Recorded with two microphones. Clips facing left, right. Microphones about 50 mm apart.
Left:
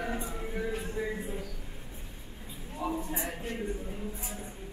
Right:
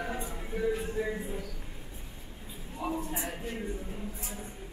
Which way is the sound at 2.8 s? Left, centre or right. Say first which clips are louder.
Left 1 dB; right.